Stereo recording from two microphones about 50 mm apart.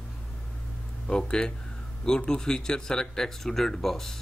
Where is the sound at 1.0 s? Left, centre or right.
Centre.